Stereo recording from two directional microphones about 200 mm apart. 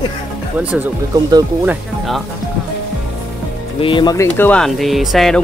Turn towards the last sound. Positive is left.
turn(degrees=0)  # may be behind; listen again after turning